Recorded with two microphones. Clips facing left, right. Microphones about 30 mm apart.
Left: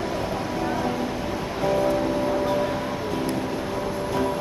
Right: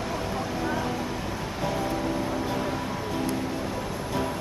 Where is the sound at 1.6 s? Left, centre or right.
Centre.